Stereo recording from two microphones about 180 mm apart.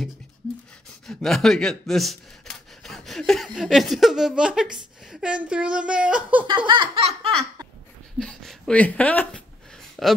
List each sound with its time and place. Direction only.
1.0 s speech: centre (ahead or behind)
6.4 s laughter: 25° right (ahead or behind)
8.2 s speech: 5° left (ahead or behind)
10.0 s speech: centre (ahead or behind)